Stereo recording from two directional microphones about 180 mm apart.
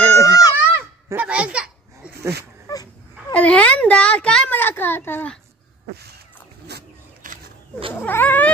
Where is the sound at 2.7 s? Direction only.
20° left (ahead or behind).